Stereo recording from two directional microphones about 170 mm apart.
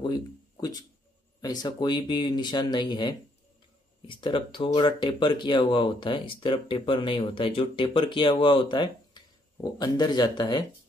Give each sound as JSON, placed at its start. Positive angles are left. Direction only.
{"t": 0.6, "sound": "speech", "side_deg": 25}